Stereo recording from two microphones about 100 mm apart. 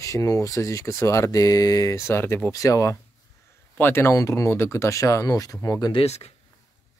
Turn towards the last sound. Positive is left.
turn(degrees=85)